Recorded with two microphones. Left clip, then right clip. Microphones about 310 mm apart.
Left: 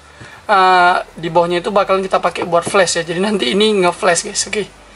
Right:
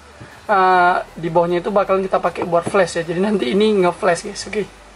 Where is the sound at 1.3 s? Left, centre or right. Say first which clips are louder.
Left 3 dB; right.